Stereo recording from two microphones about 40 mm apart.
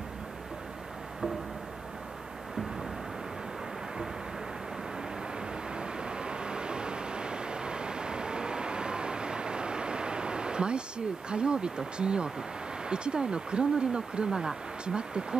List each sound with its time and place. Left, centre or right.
5.8 s vehicle: right